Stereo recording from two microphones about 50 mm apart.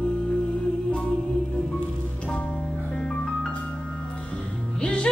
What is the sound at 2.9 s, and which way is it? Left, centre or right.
Music, centre.